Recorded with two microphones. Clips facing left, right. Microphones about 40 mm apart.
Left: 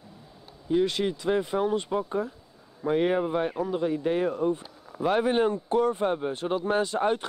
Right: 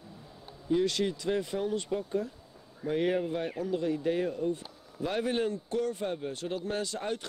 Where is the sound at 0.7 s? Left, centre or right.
Left.